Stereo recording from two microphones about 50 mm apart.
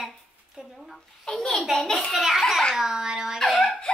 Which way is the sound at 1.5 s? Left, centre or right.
Centre.